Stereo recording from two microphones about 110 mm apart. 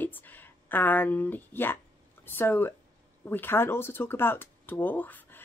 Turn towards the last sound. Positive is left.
turn(degrees=15)  # may be behind; listen again after turning